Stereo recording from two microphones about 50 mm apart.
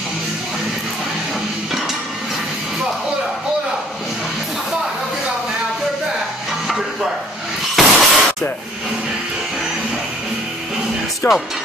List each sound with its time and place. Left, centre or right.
7.7 s shatter: centre
11.2 s speech: left